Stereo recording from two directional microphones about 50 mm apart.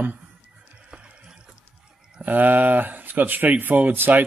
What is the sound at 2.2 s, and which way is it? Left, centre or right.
Speech, right.